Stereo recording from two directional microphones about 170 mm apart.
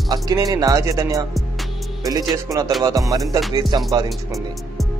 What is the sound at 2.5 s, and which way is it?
A man's voice, 20° right (ahead or behind).